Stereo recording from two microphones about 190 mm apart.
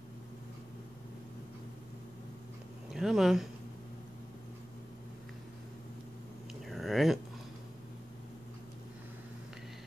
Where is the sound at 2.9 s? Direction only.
Centre (ahead or behind).